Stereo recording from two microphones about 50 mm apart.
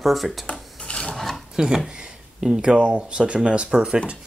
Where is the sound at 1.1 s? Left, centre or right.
Centre.